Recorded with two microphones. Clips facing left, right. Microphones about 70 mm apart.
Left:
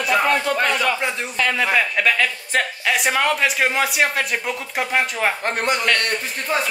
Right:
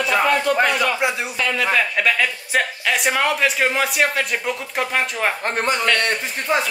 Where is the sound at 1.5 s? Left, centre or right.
Centre.